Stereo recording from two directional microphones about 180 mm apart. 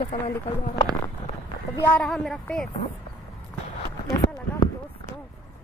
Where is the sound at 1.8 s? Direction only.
5° left (ahead or behind).